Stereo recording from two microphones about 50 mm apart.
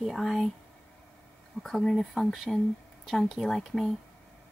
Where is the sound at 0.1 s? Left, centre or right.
Centre.